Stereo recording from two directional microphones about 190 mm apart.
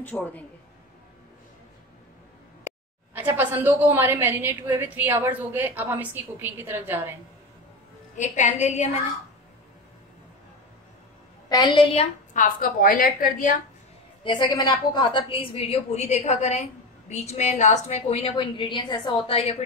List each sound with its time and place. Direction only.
0.0 s speech: 10° left (ahead or behind)
3.2 s a woman's voice: 10° right (ahead or behind)
8.2 s a woman's voice: 40° left (ahead or behind)
11.4 s a woman's voice: 20° left (ahead or behind)
12.4 s a woman's voice: 50° left (ahead or behind)
14.2 s a woman's voice: 25° left (ahead or behind)